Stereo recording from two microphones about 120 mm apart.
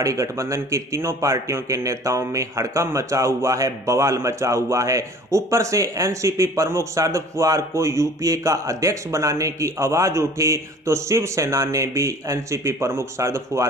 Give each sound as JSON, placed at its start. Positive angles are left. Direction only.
{"t": 0.0, "sound": "speech", "side_deg": -25}